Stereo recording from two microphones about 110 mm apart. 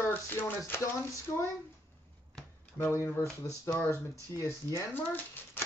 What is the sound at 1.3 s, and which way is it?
Speech, 30° left (ahead or behind).